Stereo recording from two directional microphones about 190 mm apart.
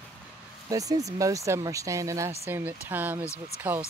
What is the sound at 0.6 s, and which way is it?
Speech, 20° right (ahead or behind).